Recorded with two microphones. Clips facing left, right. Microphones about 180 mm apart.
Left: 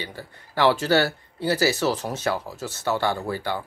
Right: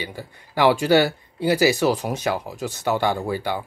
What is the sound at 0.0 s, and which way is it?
Speech, 15° right (ahead or behind).